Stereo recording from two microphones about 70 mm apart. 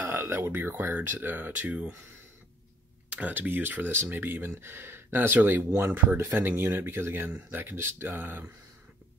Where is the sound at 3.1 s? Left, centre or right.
Right.